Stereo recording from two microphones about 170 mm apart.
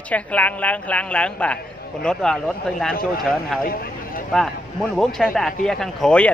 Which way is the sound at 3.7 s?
60° left (ahead or behind).